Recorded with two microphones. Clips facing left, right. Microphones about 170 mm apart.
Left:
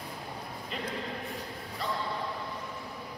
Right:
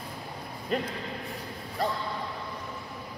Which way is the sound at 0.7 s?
45° right (ahead or behind).